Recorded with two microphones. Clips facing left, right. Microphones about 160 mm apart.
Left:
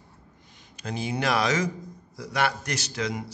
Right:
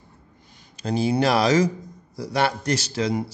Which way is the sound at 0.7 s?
35° right (ahead or behind).